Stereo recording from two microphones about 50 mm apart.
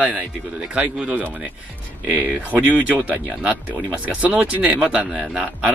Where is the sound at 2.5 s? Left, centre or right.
Right.